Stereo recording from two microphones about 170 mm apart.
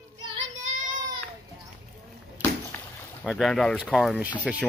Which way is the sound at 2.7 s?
10° left (ahead or behind).